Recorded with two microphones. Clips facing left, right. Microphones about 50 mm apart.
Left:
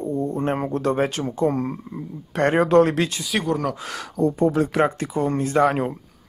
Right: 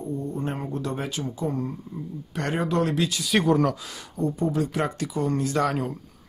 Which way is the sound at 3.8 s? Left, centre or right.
Left.